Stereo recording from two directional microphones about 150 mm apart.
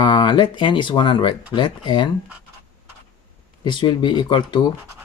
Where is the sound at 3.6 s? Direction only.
30° left (ahead or behind).